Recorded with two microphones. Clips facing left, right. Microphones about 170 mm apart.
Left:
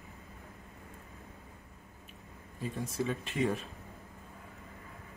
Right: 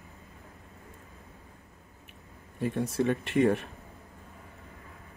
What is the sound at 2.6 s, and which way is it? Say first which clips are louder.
Speech: right 7 dB; 65° right (ahead or behind).